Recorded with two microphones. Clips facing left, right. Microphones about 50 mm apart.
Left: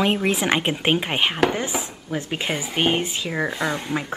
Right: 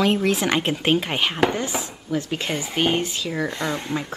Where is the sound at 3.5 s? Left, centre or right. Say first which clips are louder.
Left 1 dB; centre.